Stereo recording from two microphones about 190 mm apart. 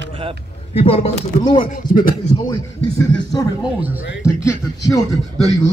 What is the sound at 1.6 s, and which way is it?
Speech, 45° left (ahead or behind).